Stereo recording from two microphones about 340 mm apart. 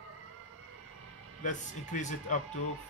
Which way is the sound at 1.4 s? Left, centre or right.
Left.